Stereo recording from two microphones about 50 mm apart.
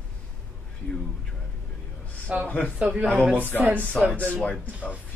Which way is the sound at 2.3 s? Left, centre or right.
Right.